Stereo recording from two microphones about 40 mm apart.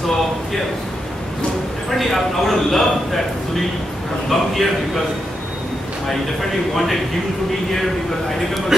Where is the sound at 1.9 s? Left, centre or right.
Centre.